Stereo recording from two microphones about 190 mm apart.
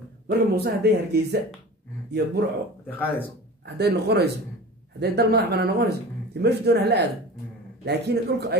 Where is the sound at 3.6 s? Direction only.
60° right (ahead or behind).